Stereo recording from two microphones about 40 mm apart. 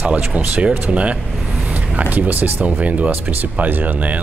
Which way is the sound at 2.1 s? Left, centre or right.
Right.